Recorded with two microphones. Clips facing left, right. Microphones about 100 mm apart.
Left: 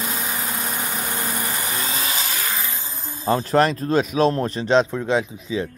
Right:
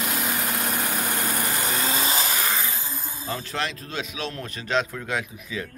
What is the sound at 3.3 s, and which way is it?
Speech, 40° left (ahead or behind).